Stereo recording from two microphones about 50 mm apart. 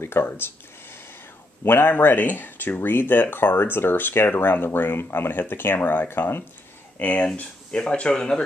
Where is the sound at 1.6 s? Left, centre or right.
Left.